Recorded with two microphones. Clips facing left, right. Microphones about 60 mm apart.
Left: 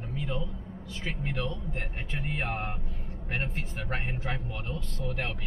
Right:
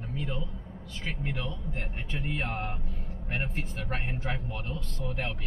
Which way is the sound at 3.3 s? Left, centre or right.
Centre.